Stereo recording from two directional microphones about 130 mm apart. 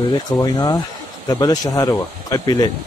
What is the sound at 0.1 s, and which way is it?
Speech, 30° left (ahead or behind).